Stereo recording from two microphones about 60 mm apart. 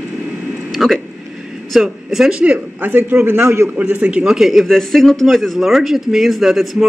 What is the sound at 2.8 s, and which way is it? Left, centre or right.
Speech, right.